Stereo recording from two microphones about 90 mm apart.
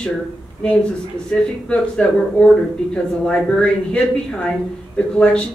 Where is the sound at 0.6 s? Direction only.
10° left (ahead or behind).